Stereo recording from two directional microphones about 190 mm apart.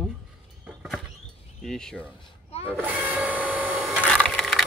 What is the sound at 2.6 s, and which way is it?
Printer, 10° right (ahead or behind).